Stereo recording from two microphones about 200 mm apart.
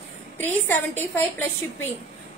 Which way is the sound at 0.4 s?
10° left (ahead or behind).